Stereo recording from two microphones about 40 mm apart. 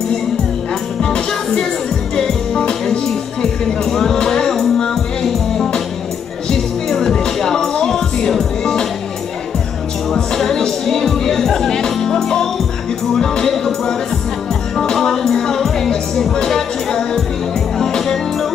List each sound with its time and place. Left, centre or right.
1.0 s music: centre
3.8 s music: centre
10.3 s music: centre
15.0 s music: centre